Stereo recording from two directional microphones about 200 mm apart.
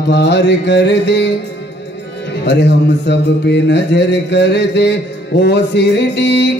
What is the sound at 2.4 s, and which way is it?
Music, 60° left (ahead or behind).